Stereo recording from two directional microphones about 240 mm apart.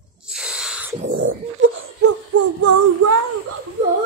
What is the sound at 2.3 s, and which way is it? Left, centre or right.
Female singing, right.